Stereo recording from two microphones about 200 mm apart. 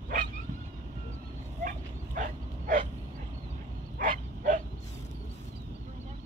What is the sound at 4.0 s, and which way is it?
Dog, 40° right (ahead or behind).